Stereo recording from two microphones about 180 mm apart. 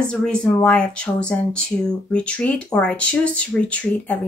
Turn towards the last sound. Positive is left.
turn(degrees=5)  # may be behind; listen again after turning